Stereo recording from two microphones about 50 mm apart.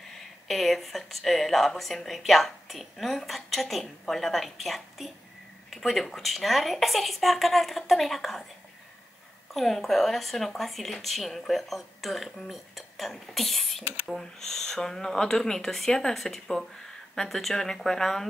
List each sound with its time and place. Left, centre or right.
0.5 s a woman's voice: centre
9.5 s a woman's voice: centre